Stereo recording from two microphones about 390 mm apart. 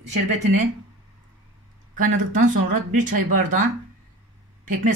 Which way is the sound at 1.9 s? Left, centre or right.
Centre.